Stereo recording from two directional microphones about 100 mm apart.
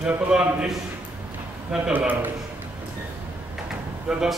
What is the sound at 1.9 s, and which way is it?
Speech, 15° right (ahead or behind).